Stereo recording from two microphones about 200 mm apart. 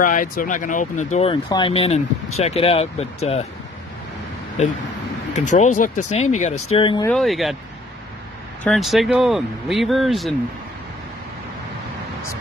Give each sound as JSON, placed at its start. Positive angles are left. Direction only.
{"t": 0.0, "sound": "speech", "side_deg": 40}
{"t": 5.3, "sound": "speech", "side_deg": 35}
{"t": 7.1, "sound": "speech", "side_deg": 0}
{"t": 8.6, "sound": "speech", "side_deg": 0}